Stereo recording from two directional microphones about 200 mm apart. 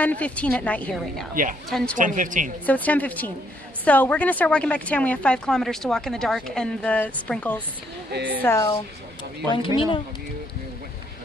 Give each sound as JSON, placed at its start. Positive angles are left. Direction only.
{"t": 0.0, "sound": "a woman's voice", "side_deg": 5}
{"t": 1.3, "sound": "a woman's voice", "side_deg": -40}
{"t": 1.7, "sound": "speech", "side_deg": 0}
{"t": 2.0, "sound": "a woman's voice", "side_deg": -40}
{"t": 2.6, "sound": "a woman's voice", "side_deg": 10}
{"t": 8.1, "sound": "speech", "side_deg": -55}
{"t": 8.4, "sound": "a woman's voice", "side_deg": 10}
{"t": 9.8, "sound": "speech", "side_deg": 25}